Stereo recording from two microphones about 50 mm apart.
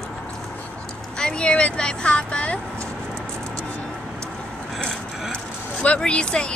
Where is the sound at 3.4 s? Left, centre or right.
Left.